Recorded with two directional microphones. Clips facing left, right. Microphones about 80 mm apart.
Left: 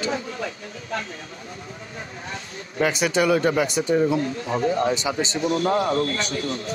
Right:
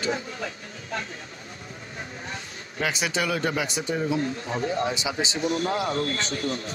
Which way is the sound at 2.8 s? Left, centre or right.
Centre.